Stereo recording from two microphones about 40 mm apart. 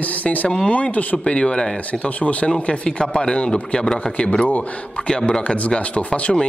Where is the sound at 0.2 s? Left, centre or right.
Left.